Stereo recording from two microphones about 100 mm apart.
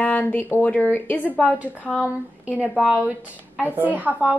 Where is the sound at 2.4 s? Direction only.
15° right (ahead or behind).